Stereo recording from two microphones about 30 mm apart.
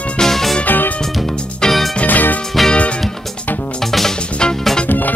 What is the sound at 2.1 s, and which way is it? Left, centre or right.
Music, left.